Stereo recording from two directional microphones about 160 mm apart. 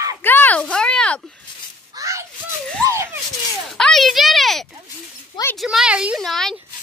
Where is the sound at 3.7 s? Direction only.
Centre (ahead or behind).